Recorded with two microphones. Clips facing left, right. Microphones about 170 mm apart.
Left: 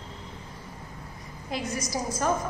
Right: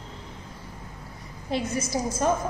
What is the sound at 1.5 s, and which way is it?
Speech, 25° right (ahead or behind).